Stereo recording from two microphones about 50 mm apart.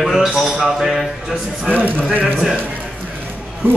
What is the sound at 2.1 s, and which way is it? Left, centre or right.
Speech, right.